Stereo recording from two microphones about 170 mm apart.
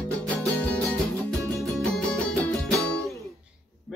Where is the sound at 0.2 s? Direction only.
Centre (ahead or behind).